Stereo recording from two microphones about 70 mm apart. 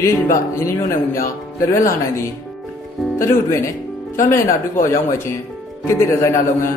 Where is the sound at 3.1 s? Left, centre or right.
Left.